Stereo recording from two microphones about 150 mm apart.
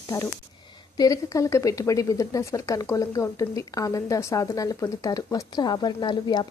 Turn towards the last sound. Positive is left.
turn(degrees=30)  # may be behind; listen again after turning